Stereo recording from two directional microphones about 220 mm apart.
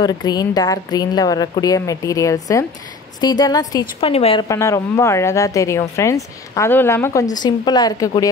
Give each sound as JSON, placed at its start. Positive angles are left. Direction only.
{"t": 0.0, "sound": "a woman's voice", "side_deg": 20}
{"t": 4.5, "sound": "speech", "side_deg": 15}